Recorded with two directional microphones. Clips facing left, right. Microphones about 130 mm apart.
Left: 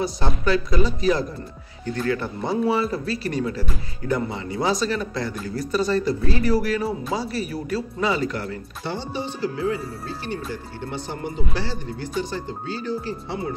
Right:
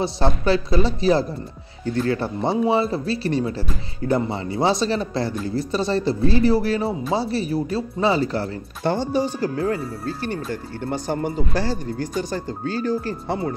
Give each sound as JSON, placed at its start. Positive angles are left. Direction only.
{"t": 0.5, "sound": "speech", "side_deg": -30}
{"t": 8.8, "sound": "speech", "side_deg": -45}